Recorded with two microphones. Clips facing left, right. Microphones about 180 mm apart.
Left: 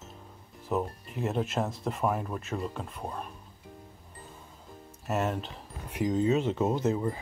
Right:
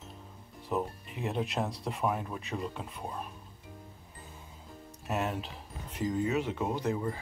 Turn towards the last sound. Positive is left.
turn(degrees=20)  # may be behind; listen again after turning